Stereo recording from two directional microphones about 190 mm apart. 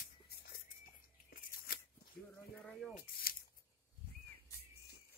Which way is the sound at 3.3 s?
50° left (ahead or behind).